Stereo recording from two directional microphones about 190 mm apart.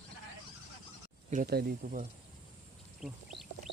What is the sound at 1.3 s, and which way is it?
Speech, 50° right (ahead or behind).